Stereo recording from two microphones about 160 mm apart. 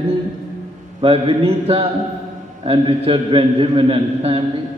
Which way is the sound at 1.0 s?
35° right (ahead or behind).